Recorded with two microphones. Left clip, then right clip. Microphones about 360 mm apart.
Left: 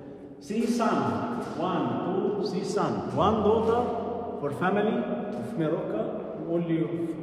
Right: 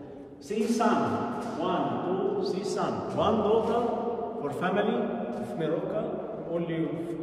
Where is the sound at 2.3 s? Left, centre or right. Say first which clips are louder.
Left 1 dB; centre.